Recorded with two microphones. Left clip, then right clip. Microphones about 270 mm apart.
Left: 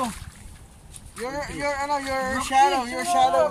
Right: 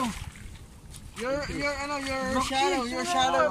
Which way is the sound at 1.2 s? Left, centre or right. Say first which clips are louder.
Left 1 dB; left.